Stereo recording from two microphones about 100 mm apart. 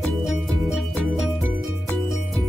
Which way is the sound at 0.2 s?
Centre (ahead or behind).